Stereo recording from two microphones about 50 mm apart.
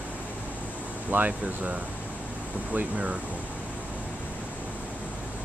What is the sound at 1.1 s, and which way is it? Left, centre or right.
Speech, right.